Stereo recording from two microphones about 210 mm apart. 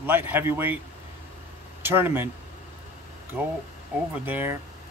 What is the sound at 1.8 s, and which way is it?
Speech, 10° right (ahead or behind).